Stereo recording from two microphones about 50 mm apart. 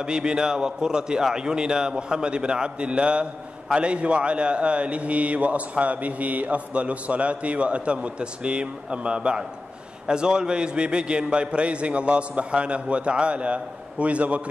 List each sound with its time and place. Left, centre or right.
0.0 s a man's voice: centre